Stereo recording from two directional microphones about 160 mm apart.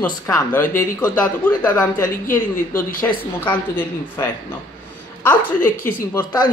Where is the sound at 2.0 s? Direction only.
60° left (ahead or behind).